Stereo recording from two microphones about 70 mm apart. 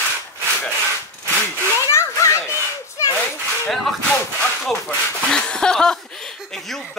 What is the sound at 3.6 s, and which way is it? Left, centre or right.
Speech, centre.